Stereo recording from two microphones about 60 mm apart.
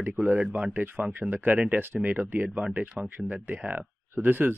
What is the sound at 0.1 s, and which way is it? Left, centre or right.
Speech, right.